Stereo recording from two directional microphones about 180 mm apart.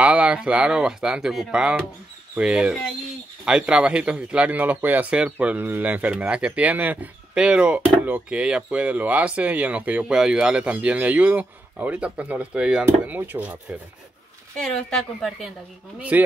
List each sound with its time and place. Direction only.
0.0 s speech: 5° right (ahead or behind)
14.6 s speech: 5° left (ahead or behind)